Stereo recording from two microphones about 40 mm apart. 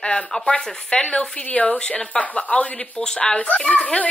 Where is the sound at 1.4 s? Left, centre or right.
Left.